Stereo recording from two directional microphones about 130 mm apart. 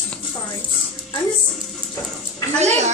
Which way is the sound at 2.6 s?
60° right (ahead or behind).